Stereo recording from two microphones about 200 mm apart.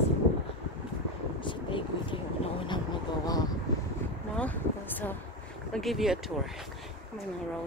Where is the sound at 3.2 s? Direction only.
20° left (ahead or behind).